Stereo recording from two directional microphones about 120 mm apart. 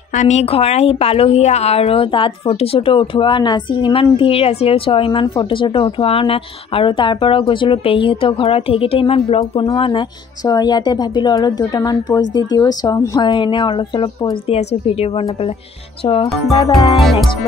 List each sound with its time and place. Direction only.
0.1 s speech: 80° left; by 10.0 s 50° left (ahead or behind)
10.4 s a woman's voice: 35° left (ahead or behind)
14.5 s a woman's voice: 55° left (ahead or behind)
16.6 s a woman's voice: 35° left (ahead or behind)
17.0 s music: centre (ahead or behind)